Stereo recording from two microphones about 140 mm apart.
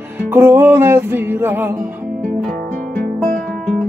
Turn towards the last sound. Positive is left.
turn(degrees=5)  # may be behind; listen again after turning